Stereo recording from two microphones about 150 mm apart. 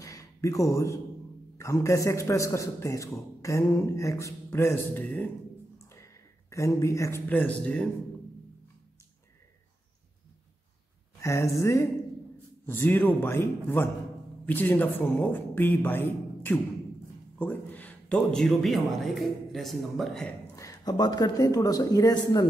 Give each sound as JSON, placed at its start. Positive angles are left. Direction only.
{"t": 0.0, "sound": "a sound", "side_deg": 20}
{"t": 1.6, "sound": "a man's voice", "side_deg": 20}
{"t": 11.1, "sound": "a man's voice", "side_deg": 20}
{"t": 20.5, "sound": "a man's voice", "side_deg": 25}